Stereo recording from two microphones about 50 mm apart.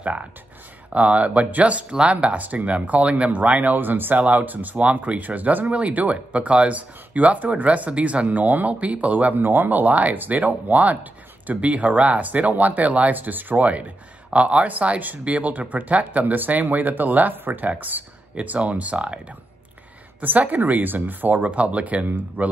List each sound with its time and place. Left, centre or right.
0.0 s speech: right
3.7 s speech: right
20.2 s speech: right
22.0 s speech: right